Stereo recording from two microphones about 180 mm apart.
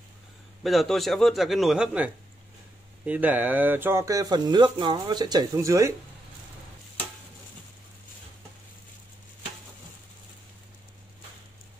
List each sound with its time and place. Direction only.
0.7 s a man's voice: centre (ahead or behind)
3.1 s speech: 10° right (ahead or behind)